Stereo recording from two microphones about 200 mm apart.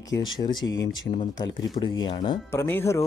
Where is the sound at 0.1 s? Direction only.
80° left.